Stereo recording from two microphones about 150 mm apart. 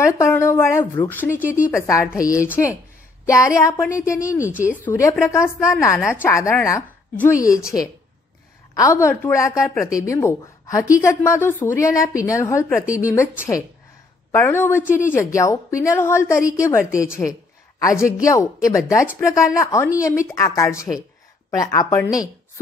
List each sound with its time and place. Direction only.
0.0 s a woman's voice: 20° left (ahead or behind)